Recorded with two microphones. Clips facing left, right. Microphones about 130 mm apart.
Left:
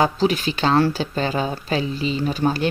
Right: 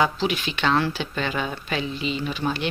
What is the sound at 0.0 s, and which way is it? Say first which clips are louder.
Speech: left 4 dB; 40° left (ahead or behind).